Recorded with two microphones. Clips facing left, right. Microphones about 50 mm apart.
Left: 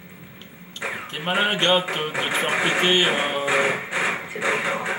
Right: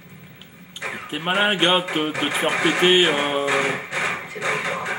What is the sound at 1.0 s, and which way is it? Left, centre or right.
Speech, centre.